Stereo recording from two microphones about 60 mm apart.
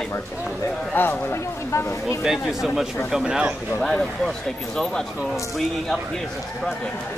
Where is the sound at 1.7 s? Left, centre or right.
Left.